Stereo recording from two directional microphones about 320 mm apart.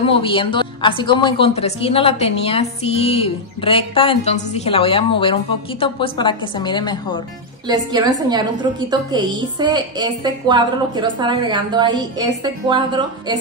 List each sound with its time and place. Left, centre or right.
0.0 s a woman's voice: centre
7.6 s a woman's voice: centre